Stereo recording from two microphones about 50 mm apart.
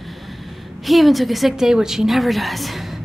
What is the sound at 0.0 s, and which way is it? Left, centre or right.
A woman's voice, centre.